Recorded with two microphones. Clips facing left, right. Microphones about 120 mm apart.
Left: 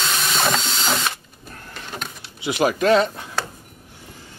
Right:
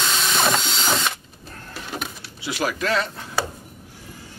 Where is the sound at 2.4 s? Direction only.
20° left (ahead or behind).